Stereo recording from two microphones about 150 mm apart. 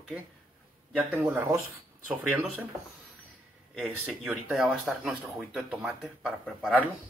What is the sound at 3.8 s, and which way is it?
Speech, 10° right (ahead or behind).